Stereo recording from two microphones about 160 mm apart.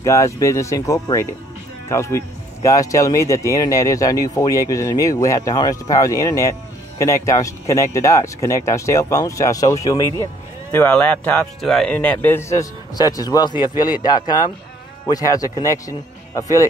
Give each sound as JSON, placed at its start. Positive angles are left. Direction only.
{"t": 0.0, "sound": "speech", "side_deg": 20}
{"t": 10.7, "sound": "speech", "side_deg": 10}